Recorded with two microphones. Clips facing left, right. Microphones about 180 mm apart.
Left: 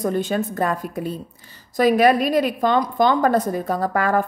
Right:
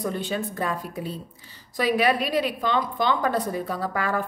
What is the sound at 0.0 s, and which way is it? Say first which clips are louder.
A woman's voice: left 6 dB; 45° left (ahead or behind).